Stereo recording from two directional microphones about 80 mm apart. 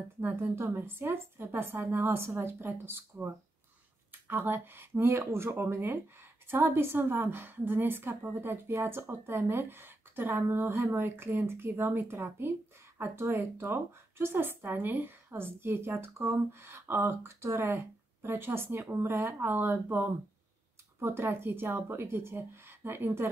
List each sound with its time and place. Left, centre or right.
0.2 s speech: right